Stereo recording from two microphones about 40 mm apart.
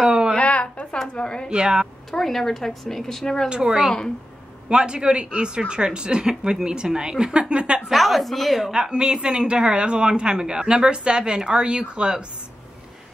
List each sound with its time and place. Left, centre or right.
0.0 s a sound: centre
0.4 s a sound: left
1.0 s a woman's voice: left
1.5 s speech: right
2.0 s a woman's voice: centre
3.4 s speech: right
7.9 s speech: centre
8.7 s speech: right